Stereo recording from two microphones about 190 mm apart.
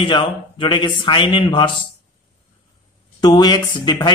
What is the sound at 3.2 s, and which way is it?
Speech, 20° left (ahead or behind).